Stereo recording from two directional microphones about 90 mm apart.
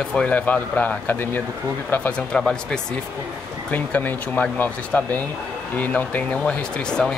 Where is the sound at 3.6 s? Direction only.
20° left (ahead or behind).